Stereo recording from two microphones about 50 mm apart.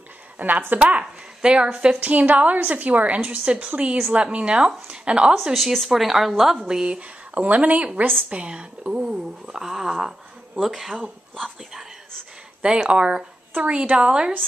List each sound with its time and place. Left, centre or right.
0.4 s a woman's voice: right
0.7 s speech: right
2.0 s a woman's voice: right
3.7 s speech: right
5.3 s a woman's voice: centre
6.7 s a woman's voice: centre
12.6 s speech: centre